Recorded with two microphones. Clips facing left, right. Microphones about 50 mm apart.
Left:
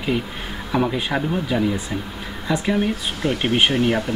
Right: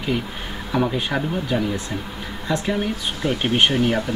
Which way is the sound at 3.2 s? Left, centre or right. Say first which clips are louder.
Left 1 dB; left.